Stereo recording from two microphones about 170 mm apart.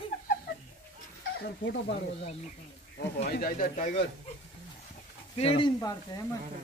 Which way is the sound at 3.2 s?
60° left (ahead or behind).